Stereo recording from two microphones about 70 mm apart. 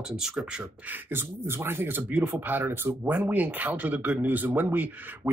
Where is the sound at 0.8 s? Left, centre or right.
Right.